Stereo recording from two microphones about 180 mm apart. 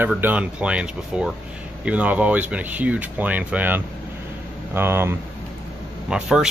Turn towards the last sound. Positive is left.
turn(degrees=-5)  # may be behind; listen again after turning